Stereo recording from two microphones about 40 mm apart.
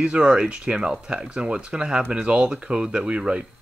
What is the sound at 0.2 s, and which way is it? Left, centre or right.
Speech, right.